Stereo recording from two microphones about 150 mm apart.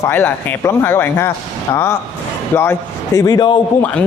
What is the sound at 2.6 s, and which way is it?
Speech, 20° left (ahead or behind).